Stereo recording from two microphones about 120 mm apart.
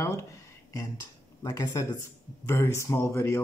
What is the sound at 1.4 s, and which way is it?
Speech, 30° left (ahead or behind).